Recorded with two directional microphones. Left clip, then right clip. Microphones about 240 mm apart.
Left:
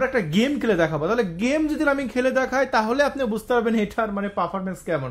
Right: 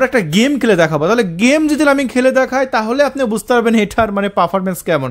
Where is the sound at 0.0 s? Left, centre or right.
Right.